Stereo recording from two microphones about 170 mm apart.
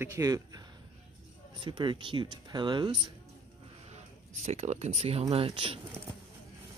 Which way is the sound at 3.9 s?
40° right (ahead or behind).